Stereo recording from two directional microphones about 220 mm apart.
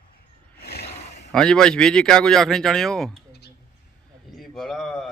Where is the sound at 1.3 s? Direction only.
5° left (ahead or behind).